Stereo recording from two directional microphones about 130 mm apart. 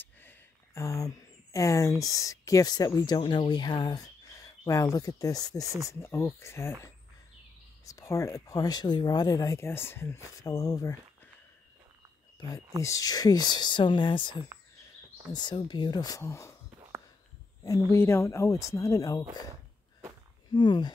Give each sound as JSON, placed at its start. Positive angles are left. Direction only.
{"t": 0.0, "sound": "a sound", "side_deg": 15}
{"t": 3.2, "sound": "speech", "side_deg": 40}
{"t": 7.8, "sound": "speech", "side_deg": 25}
{"t": 12.4, "sound": "speech", "side_deg": 30}
{"t": 15.3, "sound": "speech", "side_deg": 35}
{"t": 17.6, "sound": "speech", "side_deg": 20}
{"t": 20.5, "sound": "speech", "side_deg": 35}